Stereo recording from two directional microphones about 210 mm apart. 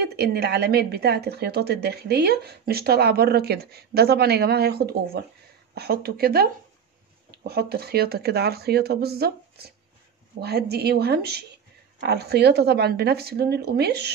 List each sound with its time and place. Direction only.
0.0 s speech: 50° right (ahead or behind)